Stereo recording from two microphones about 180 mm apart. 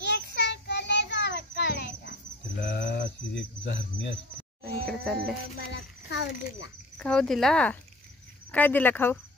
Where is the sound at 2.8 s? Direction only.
65° left (ahead or behind).